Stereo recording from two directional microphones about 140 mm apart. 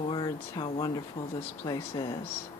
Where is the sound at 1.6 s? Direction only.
30° left (ahead or behind).